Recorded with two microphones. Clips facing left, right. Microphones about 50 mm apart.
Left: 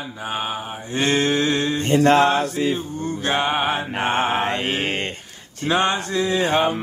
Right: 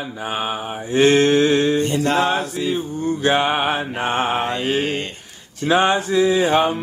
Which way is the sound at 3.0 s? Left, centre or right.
Centre.